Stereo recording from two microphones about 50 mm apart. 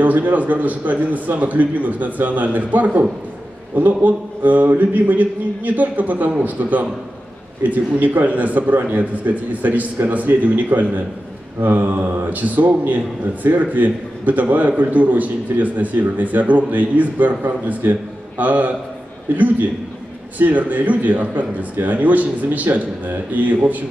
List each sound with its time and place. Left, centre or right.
0.0 s a man's voice: right